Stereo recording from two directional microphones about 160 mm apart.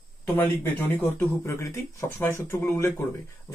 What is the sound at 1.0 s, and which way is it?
Speech, 15° left (ahead or behind).